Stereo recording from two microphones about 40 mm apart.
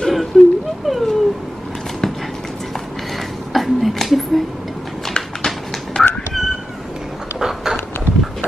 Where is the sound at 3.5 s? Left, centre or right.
Centre.